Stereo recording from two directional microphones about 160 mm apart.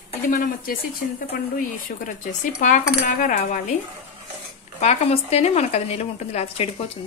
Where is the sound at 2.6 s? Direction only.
55° left (ahead or behind).